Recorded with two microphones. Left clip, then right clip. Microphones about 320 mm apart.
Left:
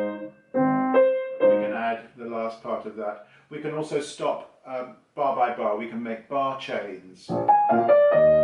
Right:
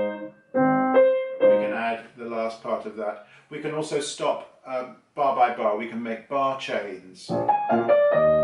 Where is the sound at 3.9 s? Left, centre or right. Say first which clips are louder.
Right 1 dB; centre.